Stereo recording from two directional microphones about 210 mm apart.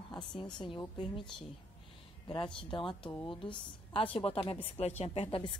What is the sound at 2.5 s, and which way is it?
A woman's voice, 25° left (ahead or behind).